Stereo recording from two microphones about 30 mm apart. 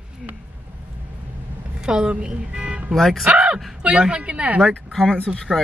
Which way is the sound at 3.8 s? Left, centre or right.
Right.